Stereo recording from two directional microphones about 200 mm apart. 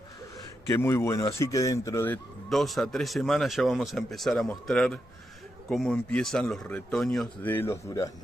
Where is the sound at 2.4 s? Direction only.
Centre (ahead or behind).